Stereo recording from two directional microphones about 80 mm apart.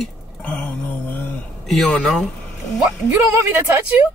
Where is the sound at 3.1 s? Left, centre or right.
Right.